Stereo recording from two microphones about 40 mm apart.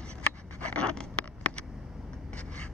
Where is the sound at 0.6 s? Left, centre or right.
Left.